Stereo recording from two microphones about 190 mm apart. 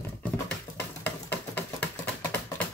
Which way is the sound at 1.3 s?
10° left (ahead or behind).